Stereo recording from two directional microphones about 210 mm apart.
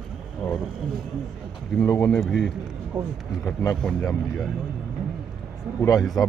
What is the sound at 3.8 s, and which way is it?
Speech, centre (ahead or behind).